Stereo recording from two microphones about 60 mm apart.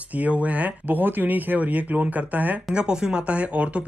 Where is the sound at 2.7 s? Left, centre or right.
Centre.